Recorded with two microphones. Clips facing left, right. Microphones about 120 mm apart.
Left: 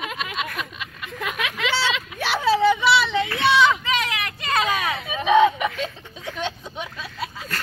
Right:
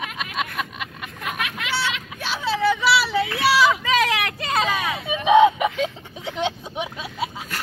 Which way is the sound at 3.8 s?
90° right.